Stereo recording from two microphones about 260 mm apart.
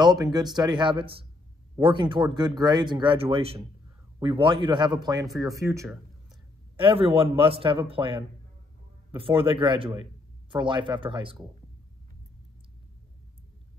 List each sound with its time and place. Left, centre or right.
0.0 s a man's voice: centre